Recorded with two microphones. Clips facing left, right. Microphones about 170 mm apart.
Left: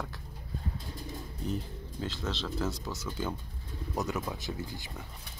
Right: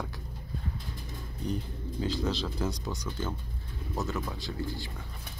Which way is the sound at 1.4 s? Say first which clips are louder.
Right 2 dB; centre (ahead or behind).